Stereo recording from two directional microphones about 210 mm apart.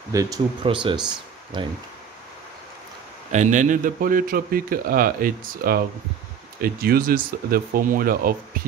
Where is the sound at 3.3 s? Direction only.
35° right (ahead or behind).